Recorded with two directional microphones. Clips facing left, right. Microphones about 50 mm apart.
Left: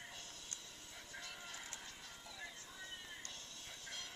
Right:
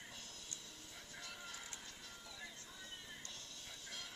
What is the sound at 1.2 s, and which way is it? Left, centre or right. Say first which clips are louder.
Music: left 1 dB; centre.